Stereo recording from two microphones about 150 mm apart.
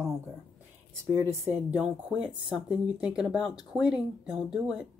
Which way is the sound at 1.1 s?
20° right (ahead or behind).